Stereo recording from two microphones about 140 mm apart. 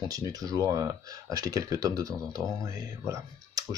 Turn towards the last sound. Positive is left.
turn(degrees=-25)  # may be behind; listen again after turning